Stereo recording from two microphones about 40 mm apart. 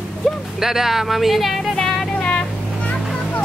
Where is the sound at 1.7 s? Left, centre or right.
Centre.